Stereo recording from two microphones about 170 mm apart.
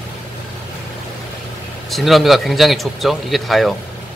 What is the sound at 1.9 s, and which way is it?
Speech, centre (ahead or behind).